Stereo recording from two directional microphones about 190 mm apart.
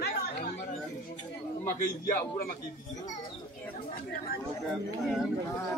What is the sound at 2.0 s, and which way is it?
Speech, 50° left (ahead or behind).